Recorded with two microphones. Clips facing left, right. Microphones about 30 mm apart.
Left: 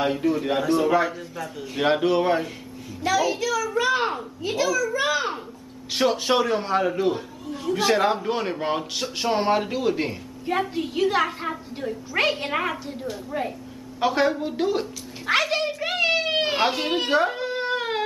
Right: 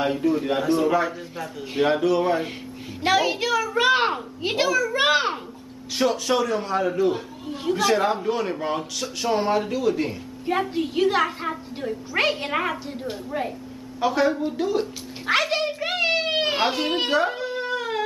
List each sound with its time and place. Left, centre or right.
0.0 s a woman's voice: centre
1.9 s a man's voice: centre
3.0 s a child's voice: right
4.6 s a child's voice: right
4.9 s a child's voice: right
6.2 s a man's voice: left
10.4 s a woman's voice: centre
14.0 s a man's voice: centre
15.2 s a child's voice: centre
16.5 s a woman's voice: centre
17.6 s music: left